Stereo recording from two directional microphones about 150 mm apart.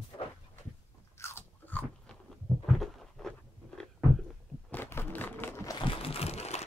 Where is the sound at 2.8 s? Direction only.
5° left (ahead or behind).